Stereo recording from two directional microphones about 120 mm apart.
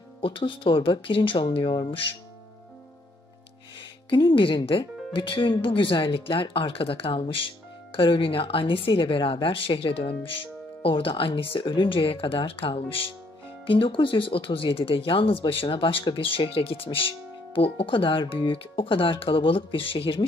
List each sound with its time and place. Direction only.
0.2 s speech: 45° left (ahead or behind)
4.1 s speech: 45° left (ahead or behind)